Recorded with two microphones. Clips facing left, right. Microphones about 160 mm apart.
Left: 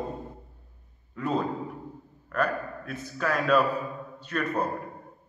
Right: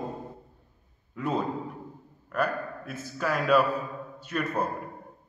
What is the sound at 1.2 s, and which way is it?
A man's voice, 5° right (ahead or behind).